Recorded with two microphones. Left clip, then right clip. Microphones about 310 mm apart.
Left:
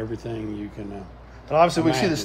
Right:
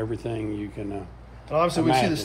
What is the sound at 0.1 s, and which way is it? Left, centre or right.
Speech, right.